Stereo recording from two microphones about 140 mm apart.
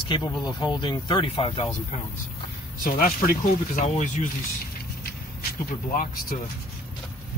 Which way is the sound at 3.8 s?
60° left (ahead or behind).